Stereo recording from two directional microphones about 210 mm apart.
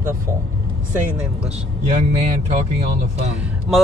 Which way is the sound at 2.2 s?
35° right (ahead or behind).